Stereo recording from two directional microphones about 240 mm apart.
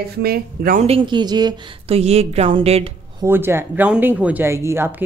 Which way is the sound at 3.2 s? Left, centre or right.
Centre.